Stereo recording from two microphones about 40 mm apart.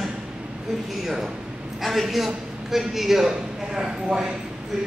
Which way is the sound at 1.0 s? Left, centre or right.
Centre.